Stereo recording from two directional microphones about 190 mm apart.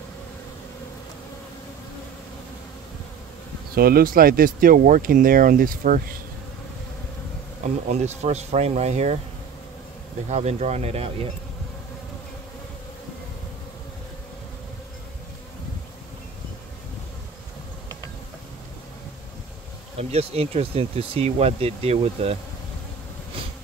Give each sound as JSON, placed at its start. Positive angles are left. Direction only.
{"t": 3.7, "sound": "speech", "side_deg": -50}
{"t": 7.6, "sound": "speech", "side_deg": -35}
{"t": 10.3, "sound": "speech", "side_deg": -35}
{"t": 20.0, "sound": "speech", "side_deg": -35}